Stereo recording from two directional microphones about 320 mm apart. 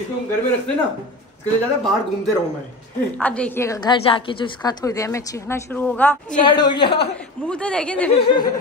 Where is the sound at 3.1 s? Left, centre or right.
Centre.